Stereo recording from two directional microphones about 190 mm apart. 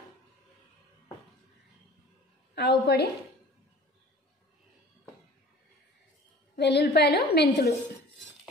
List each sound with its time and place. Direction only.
2.5 s a woman's voice: 60° left (ahead or behind)
6.5 s a woman's voice: 60° left (ahead or behind)